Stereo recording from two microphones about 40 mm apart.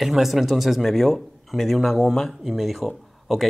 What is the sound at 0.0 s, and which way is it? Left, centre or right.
Speech, centre.